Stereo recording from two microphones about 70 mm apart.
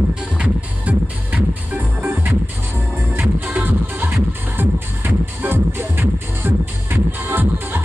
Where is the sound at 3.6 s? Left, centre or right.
Right.